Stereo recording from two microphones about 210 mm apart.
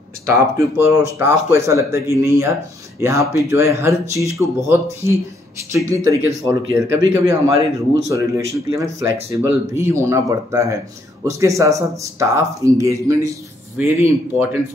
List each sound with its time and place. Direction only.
0.3 s speech: 15° right (ahead or behind)
5.9 s speech: 15° right (ahead or behind)